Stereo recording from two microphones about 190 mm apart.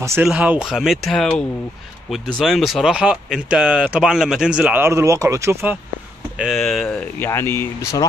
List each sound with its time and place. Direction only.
0.0 s speech: 10° right (ahead or behind)
6.3 s speech: centre (ahead or behind)
7.2 s speech: 15° left (ahead or behind)